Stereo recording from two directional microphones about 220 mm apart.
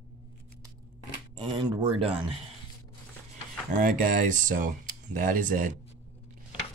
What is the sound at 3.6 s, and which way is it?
Speech, 35° right (ahead or behind).